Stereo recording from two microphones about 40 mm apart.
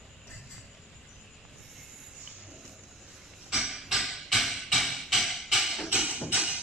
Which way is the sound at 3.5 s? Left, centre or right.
Centre.